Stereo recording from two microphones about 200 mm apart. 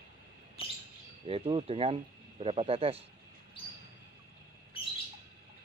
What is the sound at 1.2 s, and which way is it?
Speech, 30° right (ahead or behind).